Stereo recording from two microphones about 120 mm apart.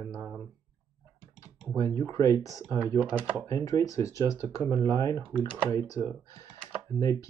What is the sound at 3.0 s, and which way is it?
Speech, 10° right (ahead or behind).